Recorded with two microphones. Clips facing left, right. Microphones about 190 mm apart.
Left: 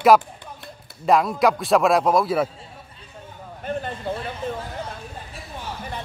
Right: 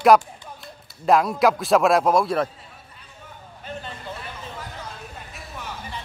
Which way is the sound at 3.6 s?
55° left (ahead or behind).